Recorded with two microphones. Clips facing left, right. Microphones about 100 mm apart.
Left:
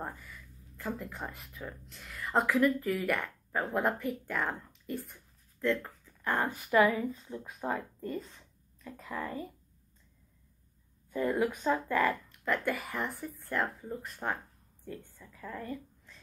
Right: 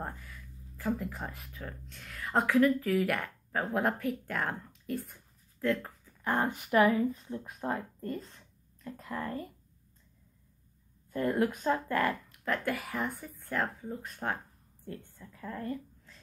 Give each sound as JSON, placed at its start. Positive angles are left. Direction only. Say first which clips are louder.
{"t": 0.0, "sound": "speech", "louder": "even", "side_deg": 0}
{"t": 5.7, "sound": "a sound", "louder": "even", "side_deg": -5}
{"t": 6.3, "sound": "a woman's voice", "louder": "even", "side_deg": -20}
{"t": 7.3, "sound": "speech", "louder": "even", "side_deg": 5}
{"t": 11.1, "sound": "speech", "louder": "right 1 dB", "side_deg": 15}
{"t": 12.1, "sound": "speech", "louder": "left 1 dB", "side_deg": 0}